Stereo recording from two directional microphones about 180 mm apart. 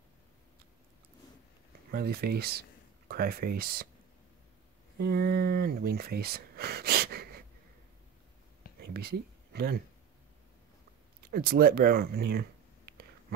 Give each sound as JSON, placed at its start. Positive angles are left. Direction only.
{"t": 1.9, "sound": "speech", "side_deg": -60}
{"t": 4.9, "sound": "speech", "side_deg": -60}
{"t": 8.8, "sound": "a sound", "side_deg": -60}
{"t": 11.2, "sound": "speech", "side_deg": -55}